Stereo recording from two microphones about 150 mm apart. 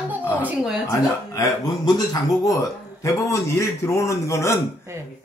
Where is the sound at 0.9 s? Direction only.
20° left (ahead or behind).